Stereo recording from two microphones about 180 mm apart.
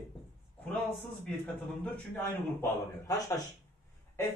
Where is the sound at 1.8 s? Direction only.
10° left (ahead or behind).